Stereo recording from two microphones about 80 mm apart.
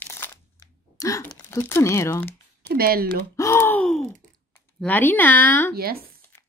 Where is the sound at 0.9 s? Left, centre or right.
Left.